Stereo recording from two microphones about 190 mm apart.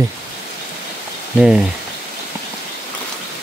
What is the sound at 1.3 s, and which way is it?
Speech, 5° right (ahead or behind).